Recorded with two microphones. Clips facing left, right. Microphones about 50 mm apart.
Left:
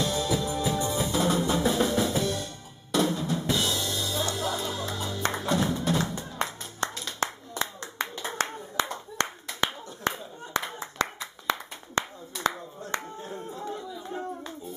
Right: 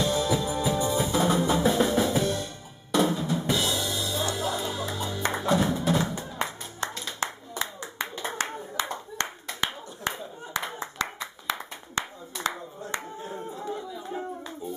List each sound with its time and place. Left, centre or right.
0.0 s music: centre
3.4 s drum kit: centre
4.4 s music: centre
8.9 s clapping: centre
12.4 s a sound: centre